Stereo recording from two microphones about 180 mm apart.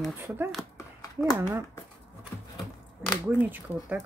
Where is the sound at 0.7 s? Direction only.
20° left (ahead or behind).